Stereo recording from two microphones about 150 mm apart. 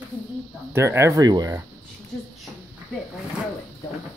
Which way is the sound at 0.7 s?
15° right (ahead or behind).